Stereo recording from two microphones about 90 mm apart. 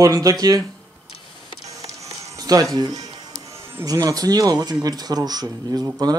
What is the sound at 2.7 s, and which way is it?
Speech, 45° right (ahead or behind).